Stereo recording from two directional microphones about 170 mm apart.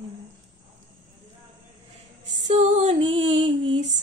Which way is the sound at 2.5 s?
40° right (ahead or behind).